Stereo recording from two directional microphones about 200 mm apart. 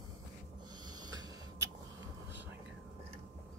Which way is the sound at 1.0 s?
20° right (ahead or behind).